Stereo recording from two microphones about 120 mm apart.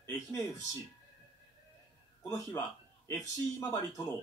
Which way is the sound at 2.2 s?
25° left (ahead or behind).